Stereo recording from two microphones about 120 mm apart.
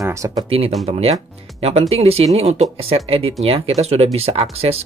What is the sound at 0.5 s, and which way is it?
Speech, 55° right (ahead or behind).